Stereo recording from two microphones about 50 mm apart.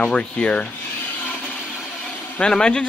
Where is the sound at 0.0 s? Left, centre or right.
Left.